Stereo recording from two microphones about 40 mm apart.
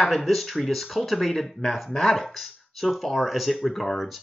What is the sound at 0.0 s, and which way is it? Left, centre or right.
Speech, centre.